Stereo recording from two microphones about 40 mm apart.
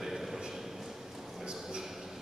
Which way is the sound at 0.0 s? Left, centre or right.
Centre.